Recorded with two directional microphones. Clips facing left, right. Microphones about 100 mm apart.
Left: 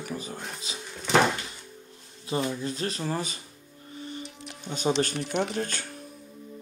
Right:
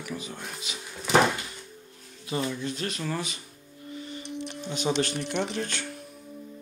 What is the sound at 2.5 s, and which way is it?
Speech, 35° left (ahead or behind).